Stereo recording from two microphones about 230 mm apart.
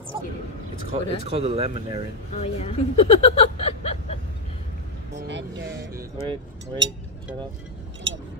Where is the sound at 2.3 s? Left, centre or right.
Left.